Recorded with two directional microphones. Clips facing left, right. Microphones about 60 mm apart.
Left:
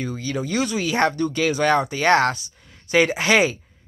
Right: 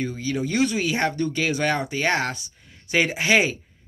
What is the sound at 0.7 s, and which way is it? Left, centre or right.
Speech, right.